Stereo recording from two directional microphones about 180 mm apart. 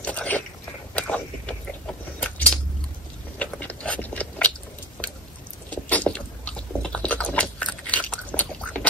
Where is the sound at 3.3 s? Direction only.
10° left (ahead or behind).